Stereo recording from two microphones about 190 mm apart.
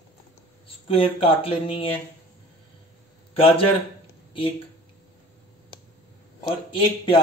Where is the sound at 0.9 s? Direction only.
30° left (ahead or behind).